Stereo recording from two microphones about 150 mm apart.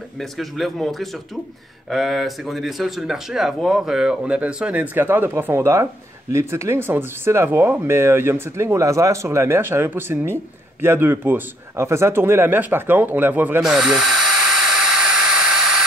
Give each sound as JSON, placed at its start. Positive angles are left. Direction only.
{"t": 0.2, "sound": "speech", "side_deg": 0}